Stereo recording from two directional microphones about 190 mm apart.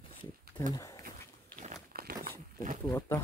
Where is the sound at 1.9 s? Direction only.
50° right (ahead or behind).